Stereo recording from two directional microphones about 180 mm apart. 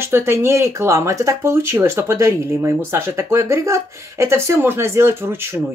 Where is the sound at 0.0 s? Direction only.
15° right (ahead or behind).